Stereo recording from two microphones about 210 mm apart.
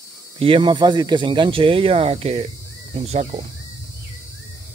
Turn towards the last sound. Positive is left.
turn(degrees=-30)  # may be behind; listen again after turning